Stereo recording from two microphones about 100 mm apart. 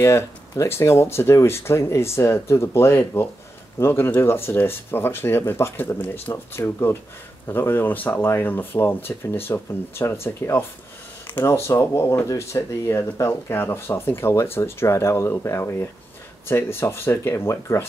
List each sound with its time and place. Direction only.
0.0 s speech: 30° left (ahead or behind)